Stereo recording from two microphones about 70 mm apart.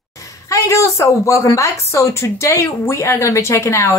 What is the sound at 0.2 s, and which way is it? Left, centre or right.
A woman's voice, left.